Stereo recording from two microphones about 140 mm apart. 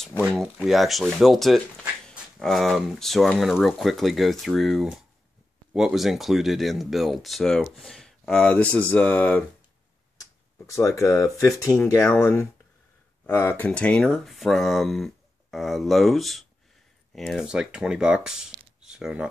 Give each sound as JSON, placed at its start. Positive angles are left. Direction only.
{"t": 0.4, "sound": "speech", "side_deg": 0}
{"t": 10.7, "sound": "speech", "side_deg": 20}
{"t": 12.0, "sound": "speech", "side_deg": 10}